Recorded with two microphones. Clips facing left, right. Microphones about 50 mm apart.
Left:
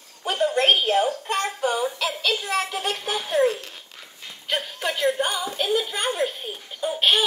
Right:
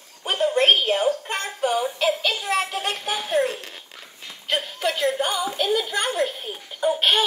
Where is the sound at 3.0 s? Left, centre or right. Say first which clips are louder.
Left 2 dB; centre.